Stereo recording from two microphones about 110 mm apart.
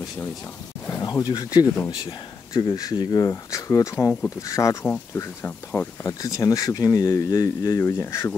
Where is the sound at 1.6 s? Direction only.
25° left (ahead or behind).